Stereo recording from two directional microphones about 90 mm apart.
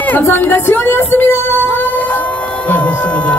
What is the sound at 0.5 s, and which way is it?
Music, 25° left (ahead or behind).